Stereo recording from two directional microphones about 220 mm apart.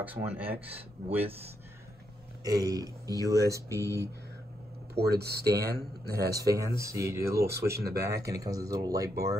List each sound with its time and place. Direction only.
0.0 s speech: 10° right (ahead or behind)
2.4 s speech: 15° right (ahead or behind)
4.9 s speech: 45° right (ahead or behind)
6.3 s speech: 15° right (ahead or behind)